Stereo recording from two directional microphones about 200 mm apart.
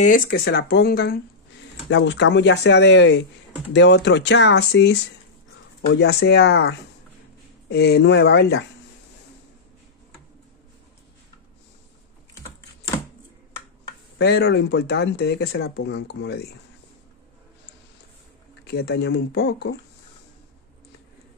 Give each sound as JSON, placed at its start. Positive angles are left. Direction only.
{"t": 0.0, "sound": "speech", "side_deg": 45}
{"t": 1.9, "sound": "speech", "side_deg": 65}
{"t": 14.1, "sound": "speech", "side_deg": 55}
{"t": 18.6, "sound": "speech", "side_deg": 55}